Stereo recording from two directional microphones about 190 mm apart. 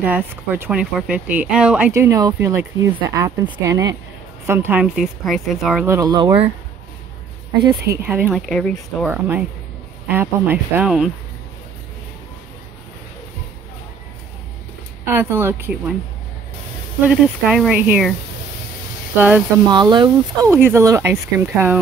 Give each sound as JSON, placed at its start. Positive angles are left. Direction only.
{"t": 0.0, "sound": "speech", "side_deg": -10}
{"t": 1.9, "sound": "speech", "side_deg": -15}
{"t": 5.9, "sound": "speech", "side_deg": -15}
{"t": 7.9, "sound": "speech", "side_deg": -10}
{"t": 10.0, "sound": "speech", "side_deg": -10}
{"t": 15.0, "sound": "speech", "side_deg": -10}
{"t": 17.0, "sound": "speech", "side_deg": -5}
{"t": 19.1, "sound": "speech", "side_deg": -10}
{"t": 19.7, "sound": "speech", "side_deg": -25}